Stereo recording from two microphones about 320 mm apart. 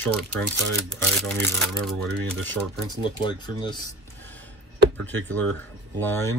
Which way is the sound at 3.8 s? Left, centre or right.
Centre.